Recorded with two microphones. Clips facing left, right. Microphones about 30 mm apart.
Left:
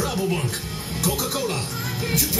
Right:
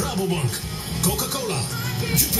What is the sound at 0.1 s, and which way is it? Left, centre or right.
Speech, centre.